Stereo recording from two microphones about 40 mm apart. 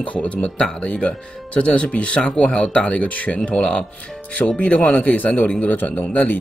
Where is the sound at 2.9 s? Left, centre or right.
Left.